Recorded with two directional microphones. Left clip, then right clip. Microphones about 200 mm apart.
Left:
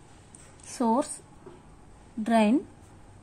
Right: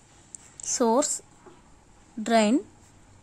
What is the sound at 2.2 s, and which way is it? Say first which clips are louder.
Speech: right 2 dB; 30° right (ahead or behind).